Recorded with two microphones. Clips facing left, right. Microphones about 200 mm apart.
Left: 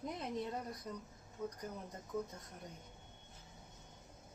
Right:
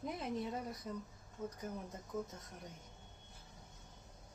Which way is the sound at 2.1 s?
Centre (ahead or behind).